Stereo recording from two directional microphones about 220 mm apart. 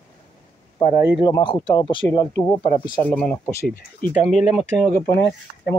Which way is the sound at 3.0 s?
5° left (ahead or behind).